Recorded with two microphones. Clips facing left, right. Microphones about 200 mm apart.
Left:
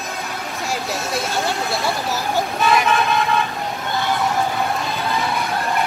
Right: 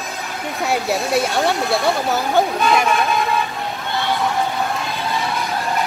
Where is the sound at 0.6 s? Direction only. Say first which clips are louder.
Right 6 dB; 60° right (ahead or behind).